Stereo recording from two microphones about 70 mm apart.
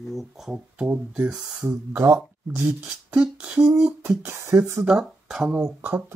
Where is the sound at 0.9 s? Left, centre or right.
Centre.